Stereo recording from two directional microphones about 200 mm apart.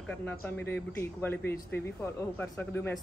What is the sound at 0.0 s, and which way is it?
Speech, 10° left (ahead or behind).